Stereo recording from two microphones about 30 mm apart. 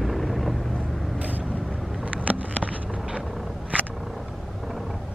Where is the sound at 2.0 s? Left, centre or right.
Right.